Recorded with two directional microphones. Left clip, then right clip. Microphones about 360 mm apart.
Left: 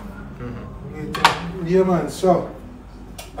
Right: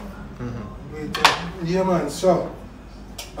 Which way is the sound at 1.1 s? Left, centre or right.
Centre.